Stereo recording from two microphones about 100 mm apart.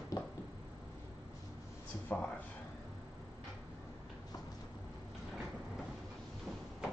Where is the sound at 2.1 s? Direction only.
15° left (ahead or behind).